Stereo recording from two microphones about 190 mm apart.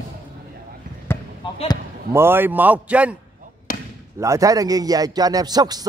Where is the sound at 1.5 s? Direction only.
30° left (ahead or behind).